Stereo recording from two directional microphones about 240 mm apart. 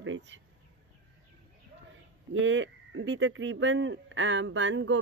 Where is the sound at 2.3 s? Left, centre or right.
Right.